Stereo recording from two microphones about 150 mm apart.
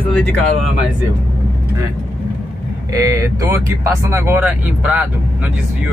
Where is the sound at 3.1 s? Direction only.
20° right (ahead or behind).